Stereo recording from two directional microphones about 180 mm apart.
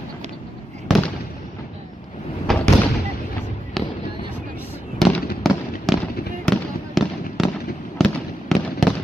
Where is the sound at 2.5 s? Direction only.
Centre (ahead or behind).